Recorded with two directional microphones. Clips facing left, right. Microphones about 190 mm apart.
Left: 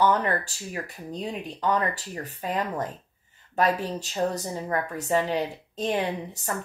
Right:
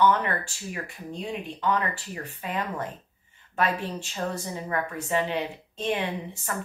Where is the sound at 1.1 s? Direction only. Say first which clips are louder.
Left 1 dB; 40° left (ahead or behind).